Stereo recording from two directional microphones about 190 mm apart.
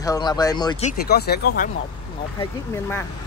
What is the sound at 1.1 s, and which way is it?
Speech, 55° left (ahead or behind).